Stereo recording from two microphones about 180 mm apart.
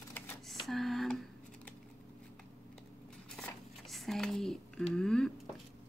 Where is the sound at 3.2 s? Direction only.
5° left (ahead or behind).